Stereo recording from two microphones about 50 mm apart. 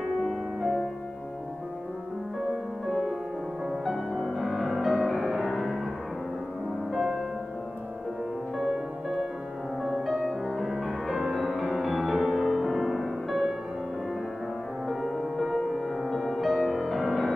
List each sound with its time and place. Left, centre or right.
0.2 s music: centre
4.1 s music: centre
6.9 s music: centre
9.8 s music: centre
14.9 s music: centre